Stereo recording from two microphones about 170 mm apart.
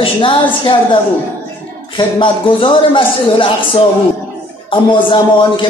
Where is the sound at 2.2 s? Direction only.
30° left (ahead or behind).